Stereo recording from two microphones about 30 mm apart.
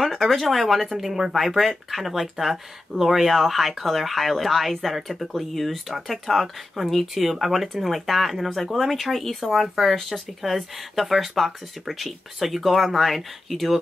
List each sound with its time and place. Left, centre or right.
0.0 s speech: centre